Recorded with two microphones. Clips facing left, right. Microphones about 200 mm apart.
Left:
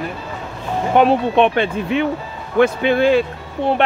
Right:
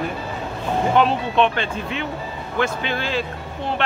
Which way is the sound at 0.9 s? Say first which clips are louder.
Left 6 dB; 55° left (ahead or behind).